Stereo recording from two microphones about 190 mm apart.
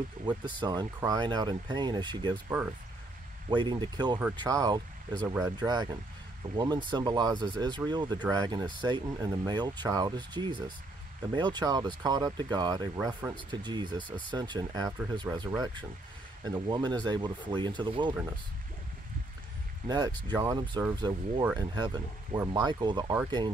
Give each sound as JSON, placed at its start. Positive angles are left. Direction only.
{"t": 0.2, "sound": "speech", "side_deg": -25}
{"t": 3.4, "sound": "speech", "side_deg": -25}
{"t": 19.9, "sound": "speech", "side_deg": -20}